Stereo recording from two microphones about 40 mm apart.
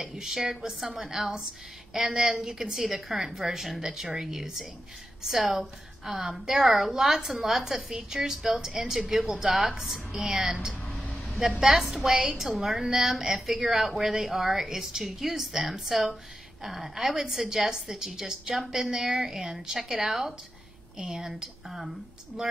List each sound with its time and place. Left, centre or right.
0.0 s speech: centre
0.8 s a woman's voice: right
11.1 s a sound: centre
11.6 s speech: centre